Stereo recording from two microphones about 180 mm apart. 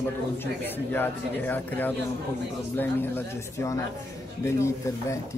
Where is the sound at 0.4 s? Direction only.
10° left (ahead or behind).